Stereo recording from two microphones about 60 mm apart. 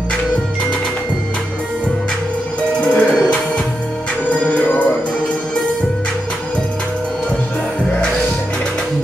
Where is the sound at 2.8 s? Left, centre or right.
Left.